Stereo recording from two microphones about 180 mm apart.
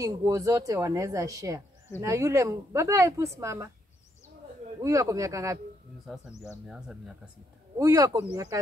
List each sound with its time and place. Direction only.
0.0 s a woman's voice: 20° right (ahead or behind)
4.8 s a woman's voice: 15° right (ahead or behind)
7.8 s speech: 20° right (ahead or behind)